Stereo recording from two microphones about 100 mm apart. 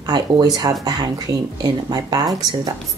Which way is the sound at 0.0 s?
45° right (ahead or behind).